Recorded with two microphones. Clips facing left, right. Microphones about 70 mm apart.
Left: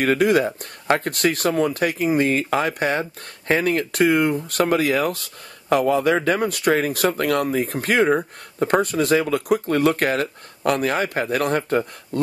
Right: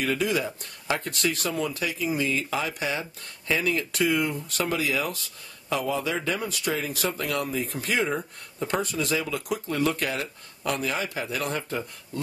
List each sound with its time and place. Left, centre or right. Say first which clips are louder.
0.0 s speech: left 8 dB; left